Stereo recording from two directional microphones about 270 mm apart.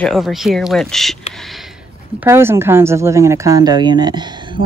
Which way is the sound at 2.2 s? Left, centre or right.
Centre.